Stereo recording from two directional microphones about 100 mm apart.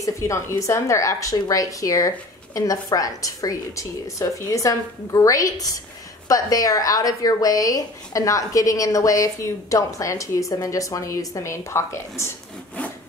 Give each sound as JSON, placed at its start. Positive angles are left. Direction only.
{"t": 0.0, "sound": "speech", "side_deg": 30}